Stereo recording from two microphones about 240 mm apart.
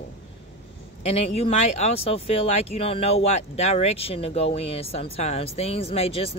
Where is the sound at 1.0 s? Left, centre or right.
Left.